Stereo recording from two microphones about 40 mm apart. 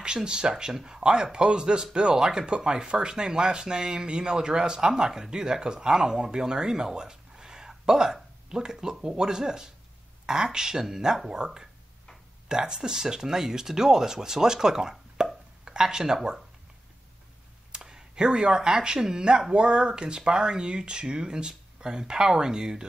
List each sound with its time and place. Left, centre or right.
0.0 s speech: right
17.7 s speech: centre